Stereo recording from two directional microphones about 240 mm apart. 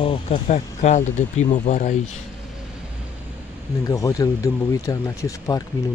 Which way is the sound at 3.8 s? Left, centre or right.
Centre.